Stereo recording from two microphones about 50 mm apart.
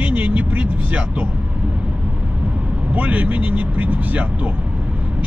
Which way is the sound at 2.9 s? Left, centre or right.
Right.